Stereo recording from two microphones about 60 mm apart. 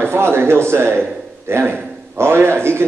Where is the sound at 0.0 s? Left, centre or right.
Right.